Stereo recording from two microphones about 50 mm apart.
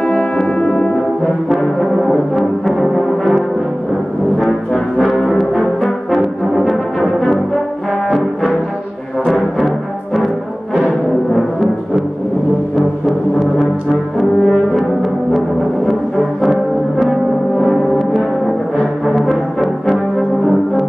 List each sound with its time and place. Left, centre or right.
0.6 s brass instrument: left
1.5 s brass instrument: centre
10.1 s music: centre
14.4 s brass instrument: centre
17.6 s music: centre
19.1 s brass instrument: centre